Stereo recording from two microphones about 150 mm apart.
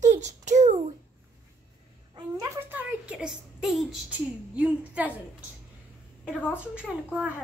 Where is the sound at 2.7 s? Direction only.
10° right (ahead or behind).